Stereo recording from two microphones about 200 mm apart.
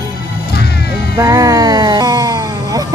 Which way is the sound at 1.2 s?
15° right (ahead or behind).